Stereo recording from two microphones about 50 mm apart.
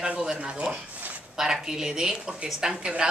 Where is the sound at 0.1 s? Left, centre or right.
Centre.